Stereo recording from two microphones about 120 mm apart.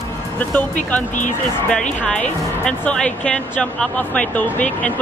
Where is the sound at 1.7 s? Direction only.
10° left (ahead or behind).